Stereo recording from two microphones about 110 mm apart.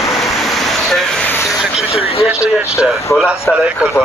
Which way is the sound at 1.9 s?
65° left (ahead or behind).